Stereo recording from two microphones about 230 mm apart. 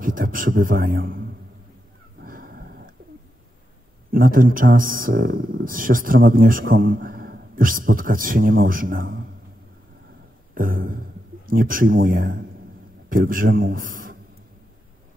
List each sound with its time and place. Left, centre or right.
0.0 s a man's voice: right
2.2 s a sound: right
4.1 s speech: right
10.5 s a man's voice: right